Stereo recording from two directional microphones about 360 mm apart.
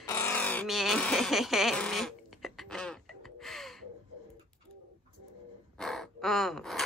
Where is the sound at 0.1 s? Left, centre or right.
Centre.